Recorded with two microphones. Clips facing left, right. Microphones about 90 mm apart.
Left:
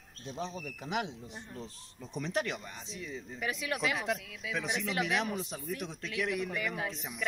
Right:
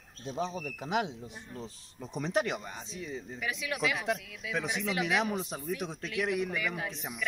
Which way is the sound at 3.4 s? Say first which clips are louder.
Left 1 dB; 40° left (ahead or behind).